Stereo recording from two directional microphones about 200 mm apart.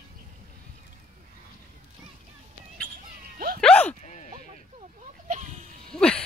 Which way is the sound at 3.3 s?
45° right (ahead or behind).